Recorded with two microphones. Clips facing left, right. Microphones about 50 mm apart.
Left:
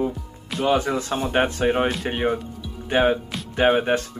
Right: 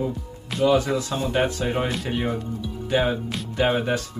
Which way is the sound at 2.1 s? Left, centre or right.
Left.